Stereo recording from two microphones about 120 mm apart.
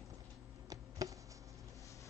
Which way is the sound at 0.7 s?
30° right (ahead or behind).